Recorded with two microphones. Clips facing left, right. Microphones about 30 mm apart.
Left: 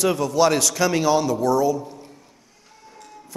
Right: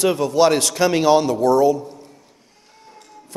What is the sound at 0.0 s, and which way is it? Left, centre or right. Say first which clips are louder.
A man's voice: right 3 dB; right.